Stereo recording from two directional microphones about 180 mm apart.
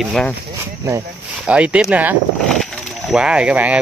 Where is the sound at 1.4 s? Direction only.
5° right (ahead or behind).